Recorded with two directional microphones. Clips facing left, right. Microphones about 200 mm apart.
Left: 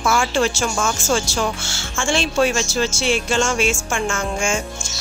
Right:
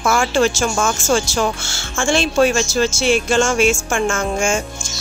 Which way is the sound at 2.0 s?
50° right (ahead or behind).